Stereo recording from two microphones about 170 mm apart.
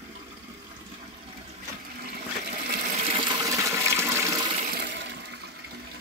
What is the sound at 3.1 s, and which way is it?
Toilet flush, 25° right (ahead or behind).